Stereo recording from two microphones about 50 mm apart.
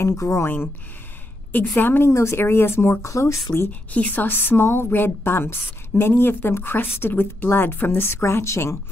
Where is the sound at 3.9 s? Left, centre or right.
Left.